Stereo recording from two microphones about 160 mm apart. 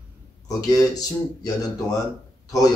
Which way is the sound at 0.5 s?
20° left (ahead or behind).